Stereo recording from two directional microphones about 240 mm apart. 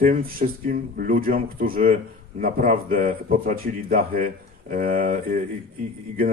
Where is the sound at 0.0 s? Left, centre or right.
Right.